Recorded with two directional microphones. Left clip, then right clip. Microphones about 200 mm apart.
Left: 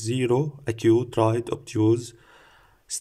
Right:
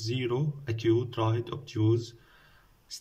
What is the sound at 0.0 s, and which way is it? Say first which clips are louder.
A man's voice: left 8 dB; 40° left (ahead or behind).